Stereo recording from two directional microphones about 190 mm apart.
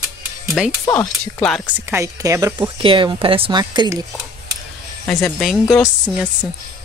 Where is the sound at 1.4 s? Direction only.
5° right (ahead or behind); by 4.0 s 20° right (ahead or behind).